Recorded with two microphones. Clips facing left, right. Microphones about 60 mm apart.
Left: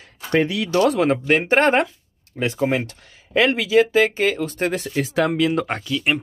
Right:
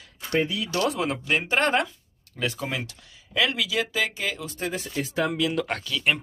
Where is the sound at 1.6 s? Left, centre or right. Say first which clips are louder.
Left 6 dB; left.